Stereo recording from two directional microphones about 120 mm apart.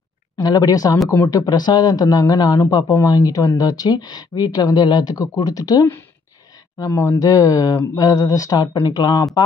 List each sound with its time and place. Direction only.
0.4 s a man's voice: 30° left (ahead or behind)